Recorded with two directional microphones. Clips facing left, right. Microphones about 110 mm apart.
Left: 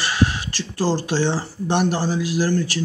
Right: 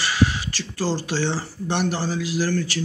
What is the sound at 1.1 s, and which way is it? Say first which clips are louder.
Speech: left 3 dB; 20° left (ahead or behind).